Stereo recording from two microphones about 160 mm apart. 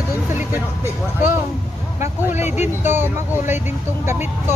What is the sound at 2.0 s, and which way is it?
Speech, 15° right (ahead or behind).